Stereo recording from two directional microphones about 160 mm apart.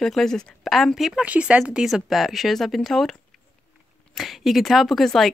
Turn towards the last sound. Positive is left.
turn(degrees=0)  # may be behind; listen again after turning